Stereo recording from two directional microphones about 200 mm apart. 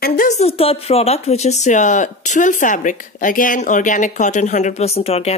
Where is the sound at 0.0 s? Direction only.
45° left (ahead or behind).